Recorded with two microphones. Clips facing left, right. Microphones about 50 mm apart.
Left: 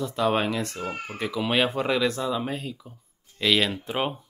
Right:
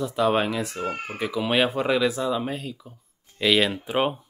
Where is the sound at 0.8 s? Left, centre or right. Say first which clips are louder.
Right 3 dB; right.